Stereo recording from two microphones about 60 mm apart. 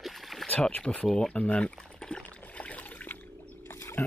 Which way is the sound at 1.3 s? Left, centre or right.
Left.